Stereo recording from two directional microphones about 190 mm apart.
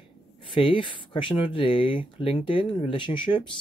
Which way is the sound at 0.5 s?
25° left (ahead or behind).